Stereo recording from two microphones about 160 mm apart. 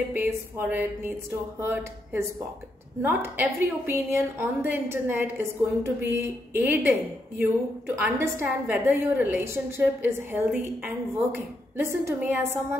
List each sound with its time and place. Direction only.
0.1 s a woman's voice: 15° right (ahead or behind)